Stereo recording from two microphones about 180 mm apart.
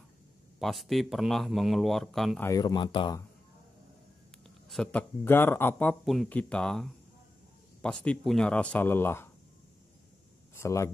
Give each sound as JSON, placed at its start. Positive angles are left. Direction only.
{"t": 0.6, "sound": "speech", "side_deg": 0}
{"t": 2.4, "sound": "speech", "side_deg": 20}
{"t": 4.6, "sound": "speech", "side_deg": 5}
{"t": 10.5, "sound": "speech", "side_deg": 15}